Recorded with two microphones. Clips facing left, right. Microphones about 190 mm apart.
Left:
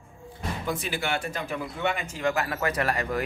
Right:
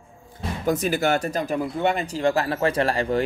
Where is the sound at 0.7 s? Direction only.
45° right (ahead or behind).